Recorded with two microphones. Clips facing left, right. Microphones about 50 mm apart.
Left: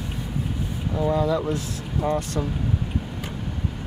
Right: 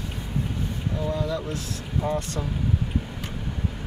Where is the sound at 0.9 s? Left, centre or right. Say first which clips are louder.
Left 7 dB; centre.